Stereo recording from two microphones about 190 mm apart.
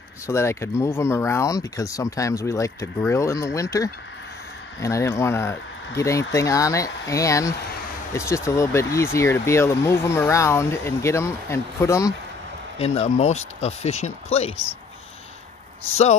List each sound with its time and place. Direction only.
0.3 s speech: 15° left (ahead or behind)
12.7 s speech: 30° left (ahead or behind)